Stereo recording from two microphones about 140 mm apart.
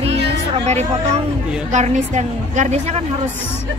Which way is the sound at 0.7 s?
50° right (ahead or behind).